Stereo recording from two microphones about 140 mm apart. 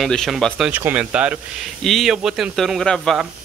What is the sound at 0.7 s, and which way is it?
Speech, 10° right (ahead or behind).